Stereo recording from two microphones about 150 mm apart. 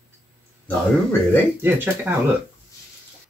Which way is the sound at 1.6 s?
15° right (ahead or behind).